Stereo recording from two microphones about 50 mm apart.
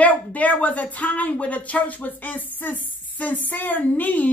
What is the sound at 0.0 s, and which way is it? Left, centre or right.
Speech, left.